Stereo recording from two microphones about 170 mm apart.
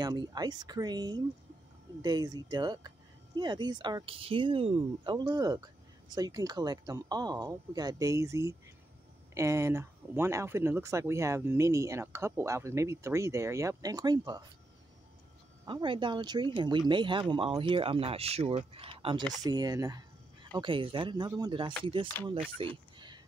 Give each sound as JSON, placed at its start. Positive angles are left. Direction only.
{"t": 0.0, "sound": "speech", "side_deg": -25}
{"t": 15.6, "sound": "speech", "side_deg": -30}
{"t": 22.9, "sound": "a sound", "side_deg": -25}